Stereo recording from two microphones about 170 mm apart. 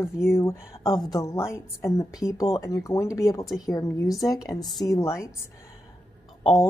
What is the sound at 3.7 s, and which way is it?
Speech, 20° left (ahead or behind).